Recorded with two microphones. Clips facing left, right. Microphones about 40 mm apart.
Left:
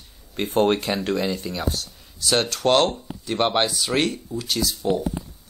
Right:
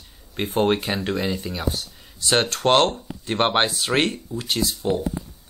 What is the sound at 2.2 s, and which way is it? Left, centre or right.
Speech, right.